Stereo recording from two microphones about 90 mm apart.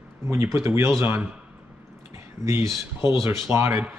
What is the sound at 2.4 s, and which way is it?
Speech, 30° right (ahead or behind).